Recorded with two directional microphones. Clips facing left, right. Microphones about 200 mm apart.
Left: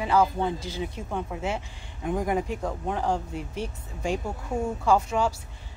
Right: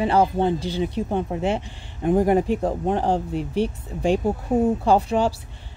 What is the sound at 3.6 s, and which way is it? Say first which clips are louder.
Speech: right 8 dB; 65° right (ahead or behind).